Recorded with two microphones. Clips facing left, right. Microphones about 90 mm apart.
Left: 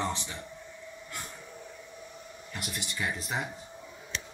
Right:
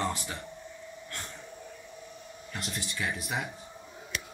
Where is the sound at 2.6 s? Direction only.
10° left (ahead or behind).